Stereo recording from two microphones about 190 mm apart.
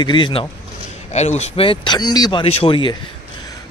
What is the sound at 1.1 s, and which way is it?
Speech, 35° left (ahead or behind).